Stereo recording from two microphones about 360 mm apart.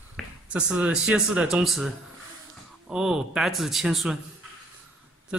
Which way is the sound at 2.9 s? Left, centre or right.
Centre.